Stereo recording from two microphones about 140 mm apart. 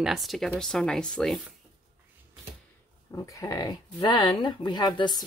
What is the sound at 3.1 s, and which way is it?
Speech, 20° left (ahead or behind).